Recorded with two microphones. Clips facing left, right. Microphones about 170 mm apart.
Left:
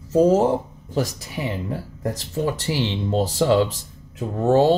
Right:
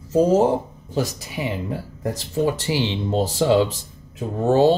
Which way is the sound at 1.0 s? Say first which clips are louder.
Even; 25° right (ahead or behind).